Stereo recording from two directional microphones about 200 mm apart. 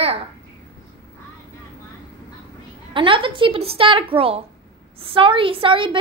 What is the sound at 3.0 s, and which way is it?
A woman's voice, 25° right (ahead or behind).